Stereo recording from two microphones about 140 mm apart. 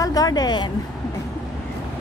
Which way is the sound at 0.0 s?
25° left (ahead or behind).